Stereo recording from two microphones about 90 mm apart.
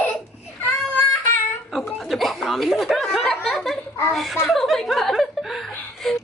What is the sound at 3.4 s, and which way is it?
Giggle, centre (ahead or behind).